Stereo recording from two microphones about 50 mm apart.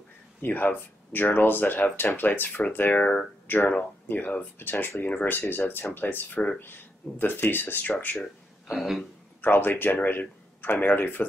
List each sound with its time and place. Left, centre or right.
0.4 s speech: left
3.0 s speech: centre
3.4 s speech: left
5.0 s speech: left
5.3 s speech: left
8.6 s speech: centre
9.4 s speech: left